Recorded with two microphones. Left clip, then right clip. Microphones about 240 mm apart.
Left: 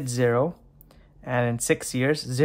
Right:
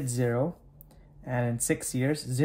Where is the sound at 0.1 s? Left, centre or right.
Left.